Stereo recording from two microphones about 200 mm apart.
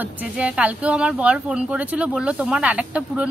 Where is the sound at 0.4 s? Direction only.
5° right (ahead or behind).